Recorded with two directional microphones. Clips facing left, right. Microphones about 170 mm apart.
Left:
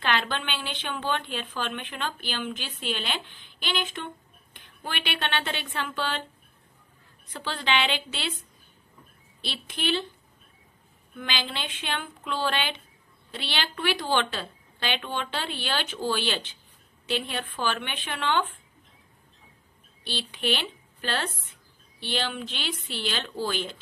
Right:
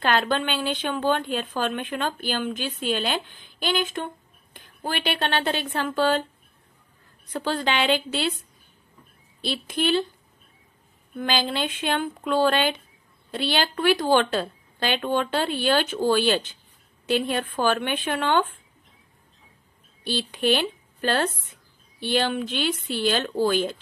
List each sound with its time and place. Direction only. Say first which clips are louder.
0.0 s a woman's voice: right 5 dB; 40° right (ahead or behind)
7.3 s a woman's voice: right 4 dB; 45° right (ahead or behind)
9.4 s a woman's voice: right 8 dB; 45° right (ahead or behind)
11.1 s a woman's voice: right 8 dB; 40° right (ahead or behind)
20.0 s a woman's voice: right 7 dB; 45° right (ahead or behind)